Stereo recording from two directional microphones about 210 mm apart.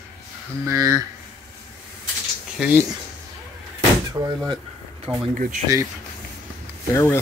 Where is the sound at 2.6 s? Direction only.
5° right (ahead or behind).